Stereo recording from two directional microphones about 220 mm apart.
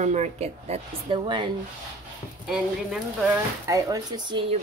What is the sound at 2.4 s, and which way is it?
Speech, centre (ahead or behind).